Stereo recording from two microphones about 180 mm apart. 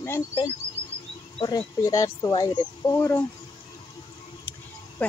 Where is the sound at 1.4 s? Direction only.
20° left (ahead or behind).